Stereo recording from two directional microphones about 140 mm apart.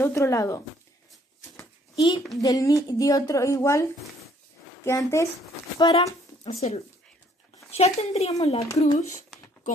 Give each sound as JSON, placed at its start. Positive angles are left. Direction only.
{"t": 0.0, "sound": "a woman's voice", "side_deg": 20}
{"t": 2.0, "sound": "a child's voice", "side_deg": 35}
{"t": 5.8, "sound": "speech", "side_deg": 35}
{"t": 7.5, "sound": "speech", "side_deg": 50}
{"t": 8.6, "sound": "a woman's voice", "side_deg": 25}